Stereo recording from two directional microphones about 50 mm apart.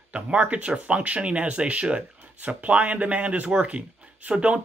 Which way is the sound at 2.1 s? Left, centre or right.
Right.